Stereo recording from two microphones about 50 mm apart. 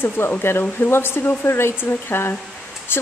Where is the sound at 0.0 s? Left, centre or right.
Left.